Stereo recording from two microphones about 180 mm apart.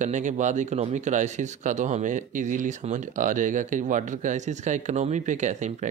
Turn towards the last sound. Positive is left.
turn(degrees=-40)  # may be behind; listen again after turning